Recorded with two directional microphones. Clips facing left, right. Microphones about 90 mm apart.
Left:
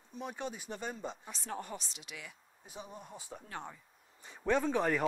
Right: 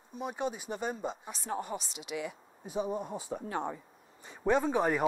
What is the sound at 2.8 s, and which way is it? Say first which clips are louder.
Speech: right 14 dB; 60° right (ahead or behind).